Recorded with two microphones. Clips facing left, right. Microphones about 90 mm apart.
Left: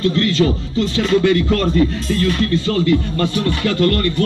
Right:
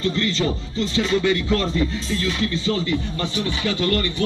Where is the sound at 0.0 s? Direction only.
55° left (ahead or behind).